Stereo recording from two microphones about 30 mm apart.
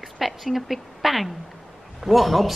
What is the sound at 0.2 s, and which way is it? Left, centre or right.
A man's voice, centre.